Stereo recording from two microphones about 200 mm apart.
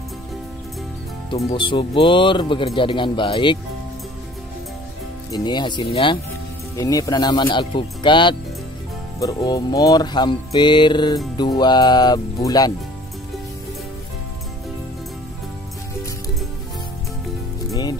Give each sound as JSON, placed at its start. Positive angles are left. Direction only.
{"t": 1.3, "sound": "speech", "side_deg": 25}
{"t": 5.3, "sound": "speech", "side_deg": 20}